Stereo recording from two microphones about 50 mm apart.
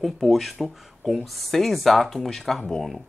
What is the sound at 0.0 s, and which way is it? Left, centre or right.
Speech, centre.